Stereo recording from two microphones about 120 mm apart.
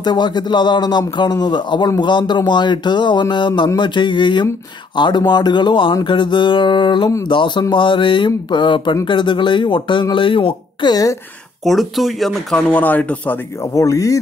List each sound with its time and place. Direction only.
0.0 s speech: 35° left (ahead or behind)
11.6 s speech: centre (ahead or behind)
12.6 s speech: 15° left (ahead or behind)
13.7 s speech: 30° left (ahead or behind)